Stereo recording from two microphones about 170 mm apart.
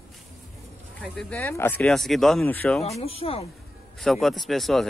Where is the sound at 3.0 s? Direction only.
35° left (ahead or behind).